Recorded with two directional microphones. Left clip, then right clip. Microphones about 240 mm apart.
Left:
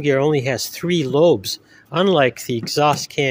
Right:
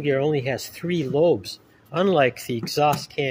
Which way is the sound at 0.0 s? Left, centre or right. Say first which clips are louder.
Left 5 dB; left.